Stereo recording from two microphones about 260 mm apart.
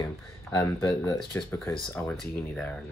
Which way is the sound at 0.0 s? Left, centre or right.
Centre.